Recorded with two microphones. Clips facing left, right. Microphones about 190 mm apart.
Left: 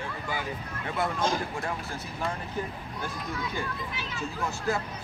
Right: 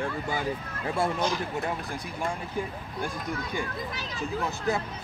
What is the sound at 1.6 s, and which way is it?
Speech, 15° right (ahead or behind).